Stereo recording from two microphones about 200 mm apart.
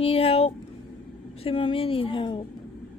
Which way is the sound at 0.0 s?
30° left (ahead or behind).